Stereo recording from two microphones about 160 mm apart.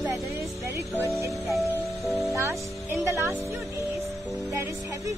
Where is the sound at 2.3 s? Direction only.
15° right (ahead or behind).